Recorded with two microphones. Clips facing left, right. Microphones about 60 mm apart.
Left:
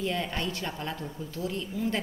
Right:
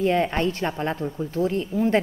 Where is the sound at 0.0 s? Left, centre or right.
Right.